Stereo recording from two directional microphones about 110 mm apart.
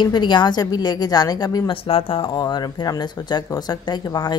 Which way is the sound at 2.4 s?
35° left (ahead or behind).